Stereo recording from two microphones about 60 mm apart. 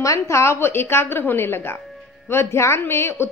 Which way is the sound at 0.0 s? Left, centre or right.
Left.